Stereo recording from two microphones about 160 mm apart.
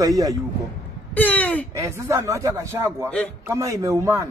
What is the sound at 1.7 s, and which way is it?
Speech, 20° right (ahead or behind).